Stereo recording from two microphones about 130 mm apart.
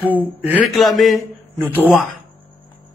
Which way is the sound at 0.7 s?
Centre (ahead or behind).